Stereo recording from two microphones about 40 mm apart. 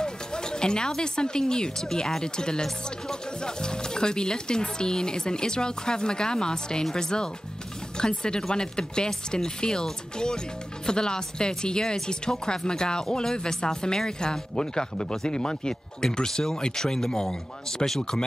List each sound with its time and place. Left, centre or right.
0.0 s speech: centre
17.8 s speech: centre